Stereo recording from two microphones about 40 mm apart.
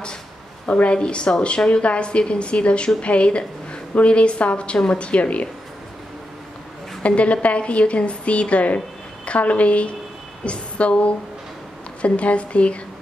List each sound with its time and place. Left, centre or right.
0.7 s a woman's voice: left
7.0 s a woman's voice: left